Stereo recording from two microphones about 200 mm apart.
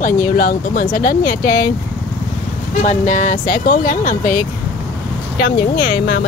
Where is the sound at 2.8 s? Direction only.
35° left (ahead or behind).